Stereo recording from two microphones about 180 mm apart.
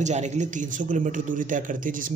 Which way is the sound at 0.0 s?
40° right (ahead or behind).